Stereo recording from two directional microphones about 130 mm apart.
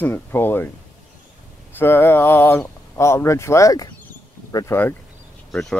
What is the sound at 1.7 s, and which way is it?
Speech, 15° left (ahead or behind).